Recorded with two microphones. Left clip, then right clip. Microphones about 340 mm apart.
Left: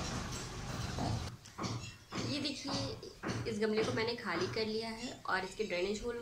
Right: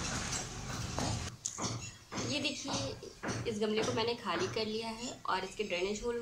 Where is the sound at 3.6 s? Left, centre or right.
Centre.